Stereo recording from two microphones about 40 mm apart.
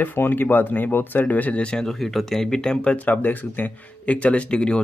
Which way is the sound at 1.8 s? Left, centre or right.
Centre.